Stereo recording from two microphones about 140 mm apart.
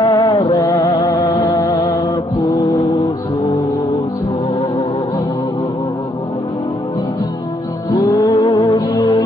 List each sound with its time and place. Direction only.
0.0 s music: 40° left (ahead or behind)
7.9 s music: 25° left (ahead or behind)